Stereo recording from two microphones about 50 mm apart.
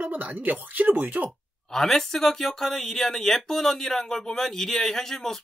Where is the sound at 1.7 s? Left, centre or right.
Centre.